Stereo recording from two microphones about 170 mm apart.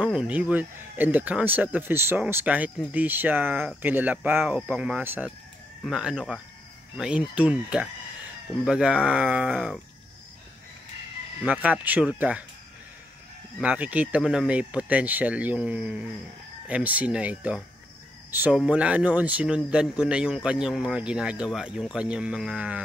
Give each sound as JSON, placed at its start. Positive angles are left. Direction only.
{"t": 0.0, "sound": "speech", "side_deg": -5}
{"t": 11.4, "sound": "speech", "side_deg": -5}
{"t": 13.6, "sound": "speech", "side_deg": -10}